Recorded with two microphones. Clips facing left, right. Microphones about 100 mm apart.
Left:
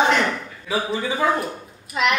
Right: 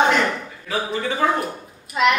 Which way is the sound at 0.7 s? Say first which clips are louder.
Even; 10° left (ahead or behind).